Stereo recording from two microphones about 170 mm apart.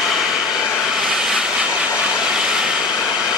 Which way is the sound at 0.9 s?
5° right (ahead or behind).